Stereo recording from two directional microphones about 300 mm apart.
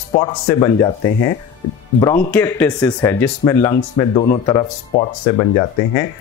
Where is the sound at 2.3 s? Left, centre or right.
Centre.